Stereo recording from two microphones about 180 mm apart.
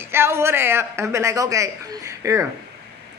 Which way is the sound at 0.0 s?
15° right (ahead or behind).